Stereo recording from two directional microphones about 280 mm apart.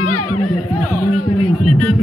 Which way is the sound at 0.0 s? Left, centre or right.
Left.